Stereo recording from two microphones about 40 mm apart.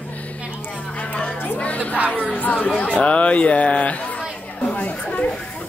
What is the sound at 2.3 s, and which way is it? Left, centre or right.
A woman's voice, left.